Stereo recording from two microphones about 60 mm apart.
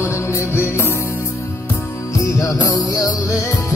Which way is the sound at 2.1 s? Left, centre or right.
Left.